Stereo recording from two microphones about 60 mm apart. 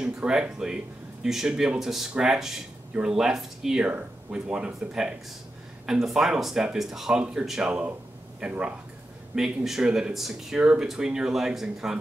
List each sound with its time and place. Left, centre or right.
0.0 s speech: centre
9.3 s speech: centre